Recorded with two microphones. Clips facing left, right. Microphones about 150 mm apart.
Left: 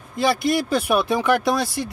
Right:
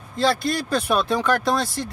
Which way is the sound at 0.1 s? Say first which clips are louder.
Left 2 dB; 15° left (ahead or behind).